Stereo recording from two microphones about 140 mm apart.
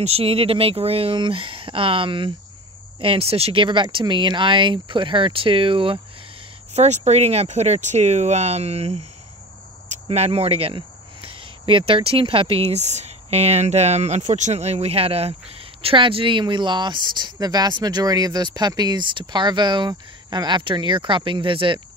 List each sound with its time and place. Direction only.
0.0 s speech: 45° right (ahead or behind)
6.7 s speech: 50° right (ahead or behind)
10.0 s speech: 45° right (ahead or behind)